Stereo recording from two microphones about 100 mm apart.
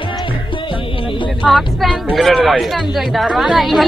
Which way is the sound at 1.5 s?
Centre (ahead or behind).